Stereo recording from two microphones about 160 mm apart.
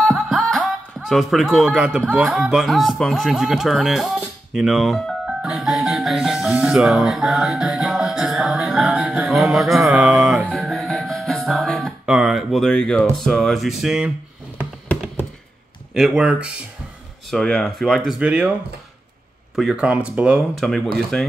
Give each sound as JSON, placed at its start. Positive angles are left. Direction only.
{"t": 0.0, "sound": "speech", "side_deg": 0}
{"t": 10.4, "sound": "music", "side_deg": 5}
{"t": 13.2, "sound": "speech", "side_deg": 0}
{"t": 15.9, "sound": "speech", "side_deg": -5}
{"t": 19.5, "sound": "speech", "side_deg": -5}